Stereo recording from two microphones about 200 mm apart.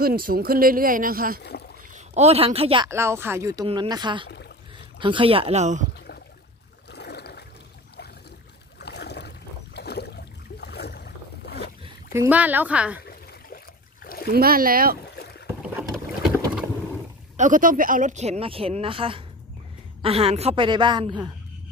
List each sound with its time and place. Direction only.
0.0 s speech: 45° right (ahead or behind)
2.0 s a woman's voice: 35° right (ahead or behind)
2.9 s speech: 15° right (ahead or behind)
3.6 s a woman's voice: 25° right (ahead or behind)
6.9 s a sound: 55° left (ahead or behind)
8.7 s boat: 55° left (ahead or behind)
12.1 s speech: 10° right (ahead or behind)
14.3 s speech: 50° right (ahead or behind)
15.6 s boat: 5° right (ahead or behind)
17.4 s a woman's voice: 40° right (ahead or behind); by 21.3 s 20° right (ahead or behind)